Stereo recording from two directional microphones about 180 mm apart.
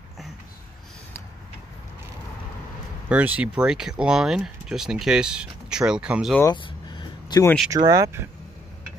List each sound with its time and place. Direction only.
3.1 s speech: 10° right (ahead or behind)
6.4 s vehicle: 25° left (ahead or behind)
7.7 s speech: 20° right (ahead or behind)